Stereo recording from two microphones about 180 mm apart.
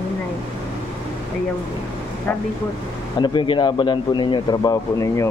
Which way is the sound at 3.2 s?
25° left (ahead or behind).